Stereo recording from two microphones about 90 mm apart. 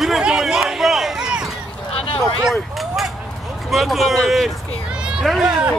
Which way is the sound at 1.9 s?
90° left.